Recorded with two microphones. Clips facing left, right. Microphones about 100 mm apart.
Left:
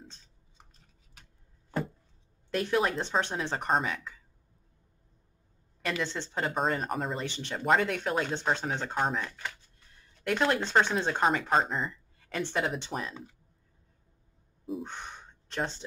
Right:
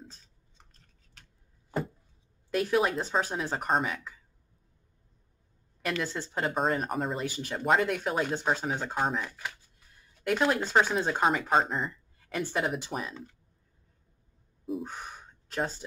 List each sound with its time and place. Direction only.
2.5 s speech: 5° right (ahead or behind)
6.0 s speech: 5° right (ahead or behind)
13.1 s speech: 10° left (ahead or behind)
14.7 s gasp: 5° right (ahead or behind)